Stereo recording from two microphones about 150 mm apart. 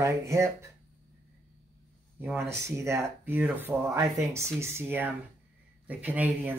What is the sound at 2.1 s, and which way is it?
Speech, 15° right (ahead or behind).